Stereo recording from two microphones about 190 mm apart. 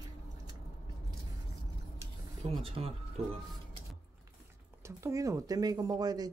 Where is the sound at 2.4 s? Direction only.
30° right (ahead or behind).